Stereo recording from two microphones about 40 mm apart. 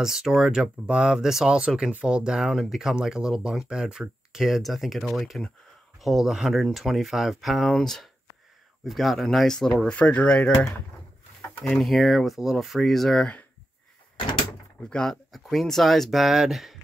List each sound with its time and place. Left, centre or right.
0.0 s speech: centre
1.9 s speech: right; by 9.7 s centre
9.9 s speech: left
11.7 s speech: centre
15.0 s speech: centre